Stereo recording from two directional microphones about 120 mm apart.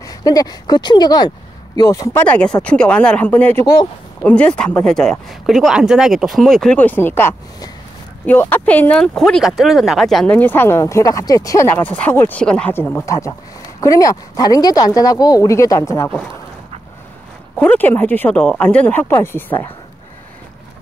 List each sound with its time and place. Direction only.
0.0 s speech: 30° left (ahead or behind)
2.2 s speech: 10° left (ahead or behind)
3.6 s speech: 40° left (ahead or behind)
4.2 s speech: 10° left (ahead or behind)
6.8 s speech: 15° left (ahead or behind)
10.3 s speech: 15° left (ahead or behind)
13.0 s speech: 25° left (ahead or behind)
17.6 s speech: 15° left (ahead or behind)